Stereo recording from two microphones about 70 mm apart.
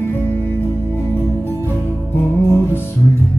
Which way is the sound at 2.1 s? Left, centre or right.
Left.